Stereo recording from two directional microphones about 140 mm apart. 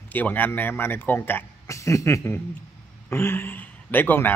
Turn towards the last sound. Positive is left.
turn(degrees=15)  # may be behind; listen again after turning